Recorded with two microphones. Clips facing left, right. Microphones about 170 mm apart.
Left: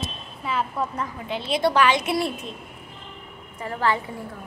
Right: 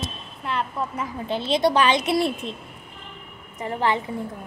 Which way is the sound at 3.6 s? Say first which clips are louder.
Right 1 dB; 20° right (ahead or behind).